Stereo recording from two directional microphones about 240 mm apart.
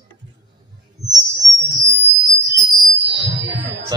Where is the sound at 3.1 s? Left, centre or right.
Right.